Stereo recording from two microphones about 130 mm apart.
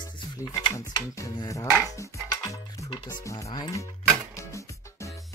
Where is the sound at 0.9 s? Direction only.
25° left (ahead or behind).